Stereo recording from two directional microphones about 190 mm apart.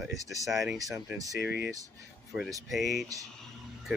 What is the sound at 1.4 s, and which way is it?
Speech, 55° left (ahead or behind).